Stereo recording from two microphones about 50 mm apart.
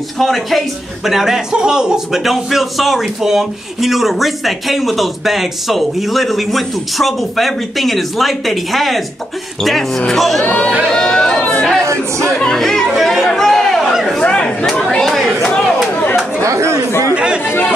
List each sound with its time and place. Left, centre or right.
0.2 s speech: centre
2.2 s a man's voice: centre
10.9 s chatter: centre
11.8 s a sound: right
12.3 s chatter: centre
14.2 s a sound: left
14.8 s chatter: centre
15.9 s chatter: left
17.1 s chatter: centre